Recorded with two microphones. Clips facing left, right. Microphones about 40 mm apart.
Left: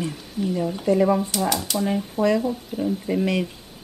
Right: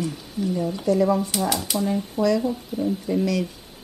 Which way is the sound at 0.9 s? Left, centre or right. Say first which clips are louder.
Left 1 dB; left.